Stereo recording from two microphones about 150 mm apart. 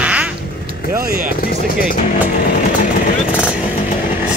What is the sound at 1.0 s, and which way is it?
Music, 75° right (ahead or behind).